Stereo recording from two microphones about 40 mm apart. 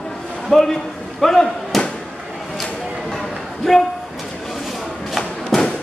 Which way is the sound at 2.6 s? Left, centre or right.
Centre.